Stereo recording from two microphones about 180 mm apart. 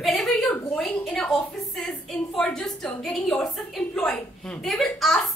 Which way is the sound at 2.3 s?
5° left (ahead or behind).